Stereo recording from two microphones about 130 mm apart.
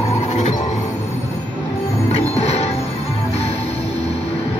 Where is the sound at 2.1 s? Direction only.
55° left (ahead or behind).